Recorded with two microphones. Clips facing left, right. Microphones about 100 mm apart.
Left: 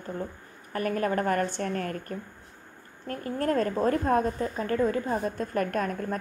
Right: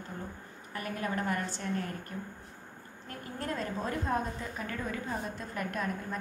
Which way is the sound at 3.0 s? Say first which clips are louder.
Left 10 dB; 50° left (ahead or behind).